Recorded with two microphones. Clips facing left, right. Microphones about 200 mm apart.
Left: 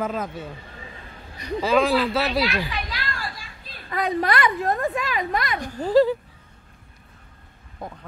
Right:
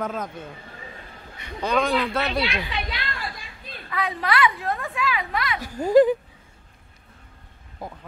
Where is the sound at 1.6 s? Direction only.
5° left (ahead or behind).